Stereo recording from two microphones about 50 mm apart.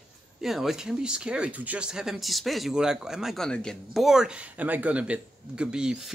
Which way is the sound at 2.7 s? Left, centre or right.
Centre.